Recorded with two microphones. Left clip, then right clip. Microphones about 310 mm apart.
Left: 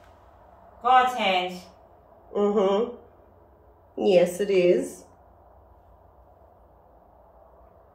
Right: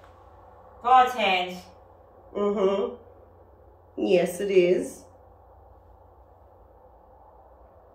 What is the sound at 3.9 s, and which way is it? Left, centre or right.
Speech, centre.